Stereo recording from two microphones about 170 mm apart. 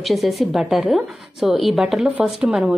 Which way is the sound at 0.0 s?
Centre (ahead or behind).